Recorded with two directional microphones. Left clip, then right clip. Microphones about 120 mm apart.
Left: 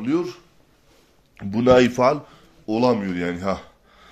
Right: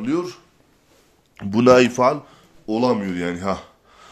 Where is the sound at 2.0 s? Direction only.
Centre (ahead or behind).